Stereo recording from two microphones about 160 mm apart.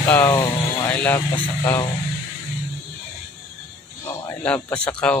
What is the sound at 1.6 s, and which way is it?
Speech, 25° left (ahead or behind).